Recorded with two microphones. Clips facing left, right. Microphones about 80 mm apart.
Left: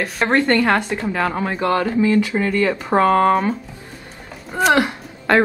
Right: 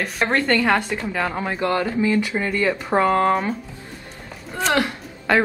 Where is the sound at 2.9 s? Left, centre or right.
Centre.